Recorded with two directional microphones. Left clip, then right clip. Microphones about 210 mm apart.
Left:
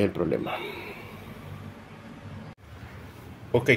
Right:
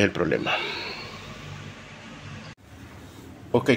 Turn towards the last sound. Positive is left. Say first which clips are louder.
# even
turn(degrees=-20)  # may be behind; listen again after turning